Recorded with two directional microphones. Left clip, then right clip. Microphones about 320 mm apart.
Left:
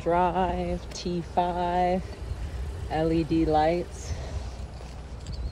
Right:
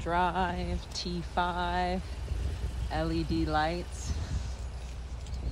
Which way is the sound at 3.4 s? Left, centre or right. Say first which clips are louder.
Left 7 dB; centre.